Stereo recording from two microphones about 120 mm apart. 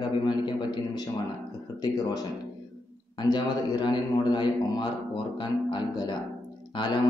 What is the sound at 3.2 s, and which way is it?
A man's voice, 35° left (ahead or behind).